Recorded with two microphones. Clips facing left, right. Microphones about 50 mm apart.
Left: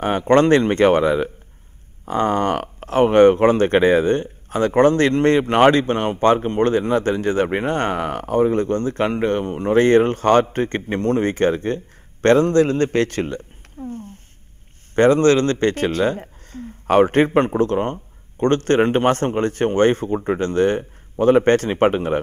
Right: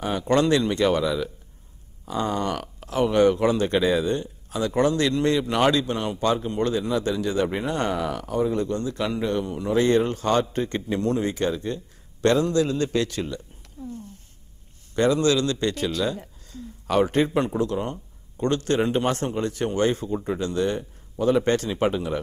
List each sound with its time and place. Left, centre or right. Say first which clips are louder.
0.0 s speech: left 6 dB; left